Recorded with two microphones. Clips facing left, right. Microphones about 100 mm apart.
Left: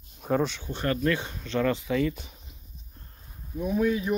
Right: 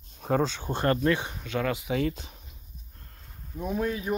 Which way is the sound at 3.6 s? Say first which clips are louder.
Left 4 dB; 45° right (ahead or behind).